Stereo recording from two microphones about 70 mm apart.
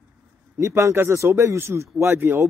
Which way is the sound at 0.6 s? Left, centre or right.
Right.